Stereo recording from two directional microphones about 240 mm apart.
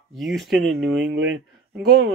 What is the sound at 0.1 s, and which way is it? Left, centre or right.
Speech, centre.